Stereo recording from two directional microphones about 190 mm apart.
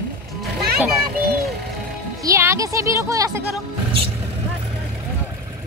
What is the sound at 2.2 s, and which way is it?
A woman's voice, 15° right (ahead or behind).